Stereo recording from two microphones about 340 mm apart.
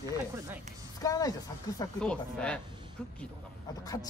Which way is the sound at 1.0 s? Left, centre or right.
Centre.